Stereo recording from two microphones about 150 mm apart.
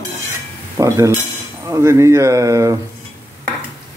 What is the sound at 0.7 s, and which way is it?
Speech, 20° right (ahead or behind).